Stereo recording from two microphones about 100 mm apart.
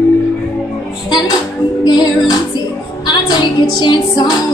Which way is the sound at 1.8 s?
45° left (ahead or behind).